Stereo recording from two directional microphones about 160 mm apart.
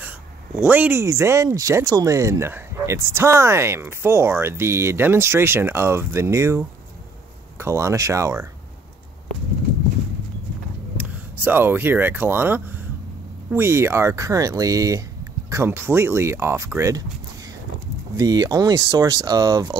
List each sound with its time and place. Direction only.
0.6 s speech: 10° right (ahead or behind)
11.0 s speech: 10° right (ahead or behind)